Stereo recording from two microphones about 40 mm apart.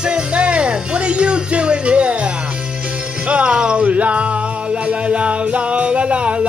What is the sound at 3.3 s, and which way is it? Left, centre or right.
Music, right.